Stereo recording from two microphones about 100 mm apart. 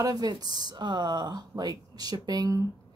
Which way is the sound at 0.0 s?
40° right (ahead or behind).